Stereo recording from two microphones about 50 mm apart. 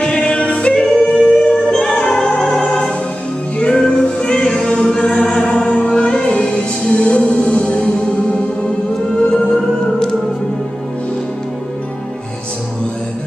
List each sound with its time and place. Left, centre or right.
0.0 s music: centre
9.4 s music: centre